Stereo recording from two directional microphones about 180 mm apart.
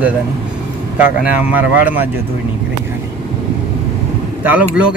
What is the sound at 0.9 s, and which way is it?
Speech, 10° right (ahead or behind).